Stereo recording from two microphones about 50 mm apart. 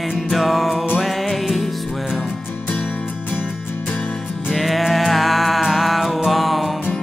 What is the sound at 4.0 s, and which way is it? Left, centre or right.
Music, centre.